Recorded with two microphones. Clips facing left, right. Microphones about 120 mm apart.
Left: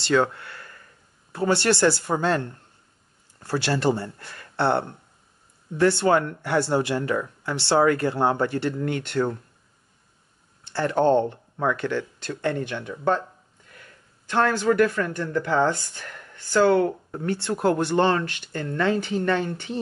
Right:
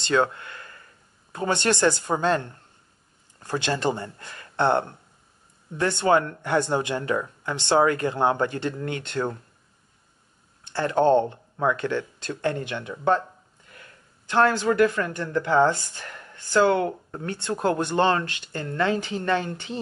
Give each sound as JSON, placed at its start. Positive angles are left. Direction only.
{"t": 0.0, "sound": "speech", "side_deg": -20}
{"t": 3.4, "sound": "speech", "side_deg": -20}
{"t": 10.7, "sound": "speech", "side_deg": -20}
{"t": 14.3, "sound": "speech", "side_deg": -20}